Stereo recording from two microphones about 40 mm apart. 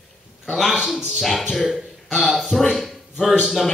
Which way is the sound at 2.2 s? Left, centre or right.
Centre.